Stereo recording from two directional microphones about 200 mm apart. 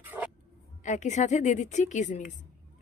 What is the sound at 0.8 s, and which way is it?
A woman's voice, 35° left (ahead or behind).